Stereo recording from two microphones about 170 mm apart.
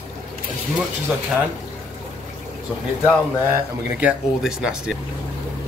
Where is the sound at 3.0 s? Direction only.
10° right (ahead or behind).